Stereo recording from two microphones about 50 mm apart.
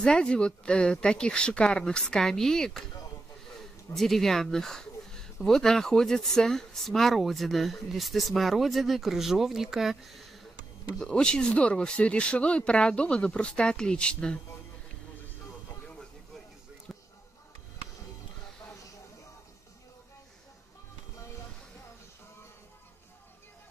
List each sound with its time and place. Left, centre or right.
0.0 s speech: centre
11.0 s speech: centre